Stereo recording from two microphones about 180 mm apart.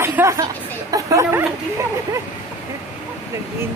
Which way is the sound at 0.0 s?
15° right (ahead or behind).